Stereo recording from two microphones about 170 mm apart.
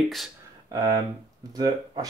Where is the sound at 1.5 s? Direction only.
25° right (ahead or behind).